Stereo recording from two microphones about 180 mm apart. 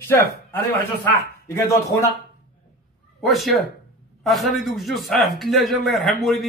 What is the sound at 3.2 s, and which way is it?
Speech, centre (ahead or behind).